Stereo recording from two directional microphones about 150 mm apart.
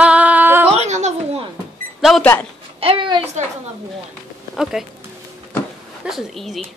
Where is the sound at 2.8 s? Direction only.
35° right (ahead or behind).